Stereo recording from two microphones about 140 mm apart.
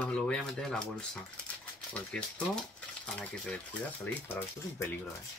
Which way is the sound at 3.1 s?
10° left (ahead or behind).